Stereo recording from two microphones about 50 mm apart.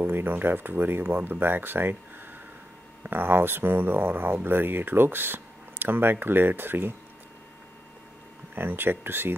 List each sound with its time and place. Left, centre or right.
0.0 s speech: right
8.5 s speech: right